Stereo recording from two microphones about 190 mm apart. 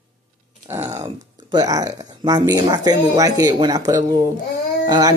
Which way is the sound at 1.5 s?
20° right (ahead or behind).